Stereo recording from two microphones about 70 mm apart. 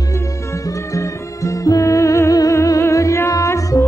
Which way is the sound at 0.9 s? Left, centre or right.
Left.